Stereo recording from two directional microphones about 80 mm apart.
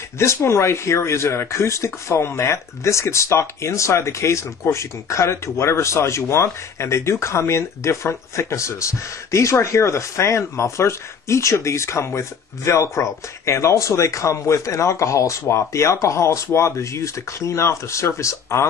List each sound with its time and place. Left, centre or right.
0.2 s speech: left